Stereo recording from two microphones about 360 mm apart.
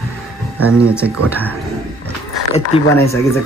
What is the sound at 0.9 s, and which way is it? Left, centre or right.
Speech, centre.